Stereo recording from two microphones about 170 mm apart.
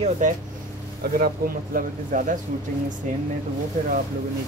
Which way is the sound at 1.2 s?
55° right (ahead or behind).